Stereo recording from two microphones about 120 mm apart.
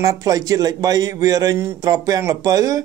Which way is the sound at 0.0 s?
30° right (ahead or behind).